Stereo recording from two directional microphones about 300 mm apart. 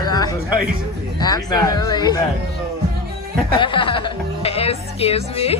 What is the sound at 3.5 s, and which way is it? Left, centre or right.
Speech, centre.